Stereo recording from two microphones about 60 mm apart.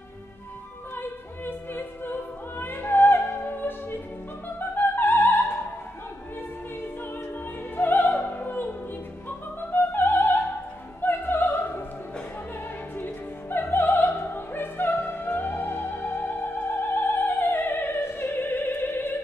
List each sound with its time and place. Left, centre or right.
0.9 s opera: left
4.6 s music: left
7.7 s music: left
12.9 s opera: left